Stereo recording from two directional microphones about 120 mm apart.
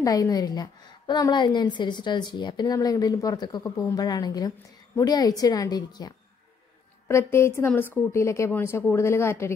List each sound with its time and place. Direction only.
0.0 s a woman's voice: 30° left (ahead or behind)
7.1 s a woman's voice: 25° left (ahead or behind)